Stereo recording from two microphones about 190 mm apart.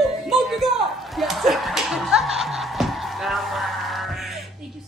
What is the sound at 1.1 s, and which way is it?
Music, centre (ahead or behind).